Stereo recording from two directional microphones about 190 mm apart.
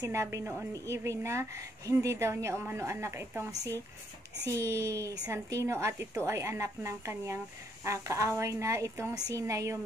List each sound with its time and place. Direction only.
0.0 s a woman's voice: 15° right (ahead or behind)